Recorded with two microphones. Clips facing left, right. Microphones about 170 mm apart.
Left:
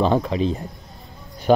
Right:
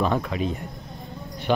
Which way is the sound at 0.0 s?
30° left (ahead or behind).